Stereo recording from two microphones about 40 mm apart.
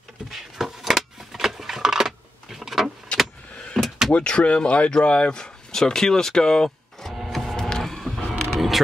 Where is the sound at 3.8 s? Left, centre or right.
Centre.